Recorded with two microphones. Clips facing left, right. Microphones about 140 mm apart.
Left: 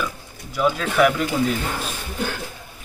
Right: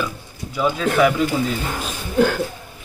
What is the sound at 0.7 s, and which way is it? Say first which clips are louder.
Speech: right 1 dB; centre (ahead or behind).